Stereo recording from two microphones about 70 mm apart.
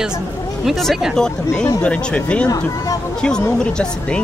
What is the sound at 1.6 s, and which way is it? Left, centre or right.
Speech, centre.